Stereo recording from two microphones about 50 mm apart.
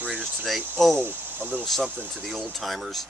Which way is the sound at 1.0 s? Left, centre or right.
Right.